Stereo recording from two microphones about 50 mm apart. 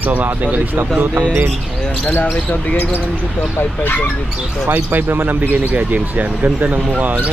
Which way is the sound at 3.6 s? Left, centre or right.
Left.